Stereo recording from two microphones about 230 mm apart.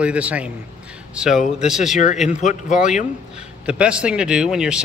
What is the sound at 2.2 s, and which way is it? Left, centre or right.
Speech, left.